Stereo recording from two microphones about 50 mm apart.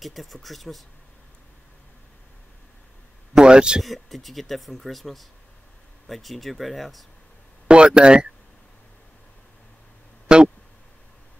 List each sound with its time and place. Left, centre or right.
0.0 s speech: centre
3.3 s speech: centre
3.8 s speech: centre
7.6 s speech: right
10.2 s a sound: centre